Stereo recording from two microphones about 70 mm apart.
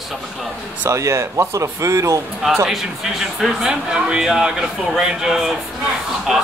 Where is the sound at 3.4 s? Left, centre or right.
Centre.